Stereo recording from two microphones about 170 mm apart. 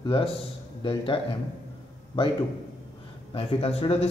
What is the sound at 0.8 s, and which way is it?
Speech, 30° left (ahead or behind).